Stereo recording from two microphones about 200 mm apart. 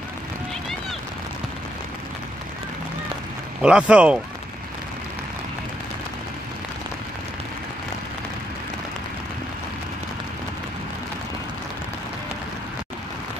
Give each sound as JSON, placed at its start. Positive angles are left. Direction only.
{"t": 3.6, "sound": "speech", "side_deg": -5}